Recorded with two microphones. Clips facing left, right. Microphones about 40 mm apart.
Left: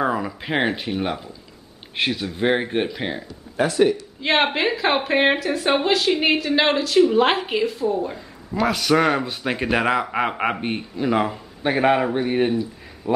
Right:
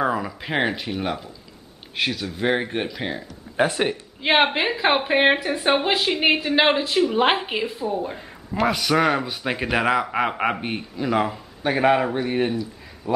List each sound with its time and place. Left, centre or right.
0.0 s speech: centre
3.5 s speech: right
4.2 s a woman's voice: centre
7.0 s a woman's voice: centre
8.6 s speech: centre